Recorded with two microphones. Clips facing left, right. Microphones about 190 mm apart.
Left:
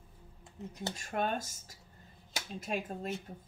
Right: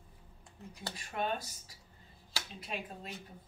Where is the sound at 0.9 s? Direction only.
45° left (ahead or behind).